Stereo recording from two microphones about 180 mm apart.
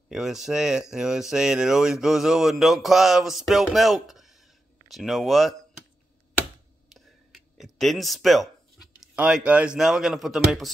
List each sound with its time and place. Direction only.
0.1 s speech: centre (ahead or behind)
6.9 s a sound: centre (ahead or behind)
9.0 s speech: 5° right (ahead or behind)